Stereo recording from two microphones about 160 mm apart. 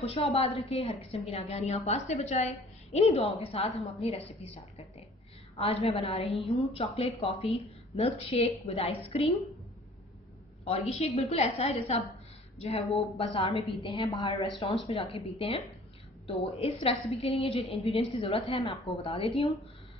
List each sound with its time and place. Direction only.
0.0 s a woman's voice: 40° left (ahead or behind)
10.6 s a woman's voice: 40° left (ahead or behind)